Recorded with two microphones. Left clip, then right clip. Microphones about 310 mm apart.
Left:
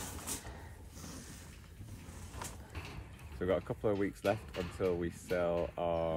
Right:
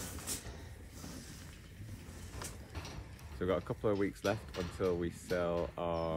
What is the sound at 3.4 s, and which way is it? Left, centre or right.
Speech, centre.